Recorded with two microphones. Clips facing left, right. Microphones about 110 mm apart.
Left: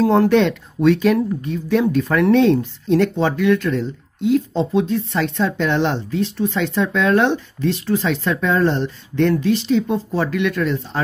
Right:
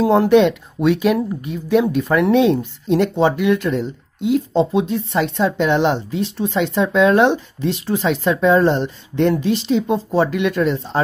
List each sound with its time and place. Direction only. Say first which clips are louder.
0.0 s speech: right 2 dB; 10° right (ahead or behind)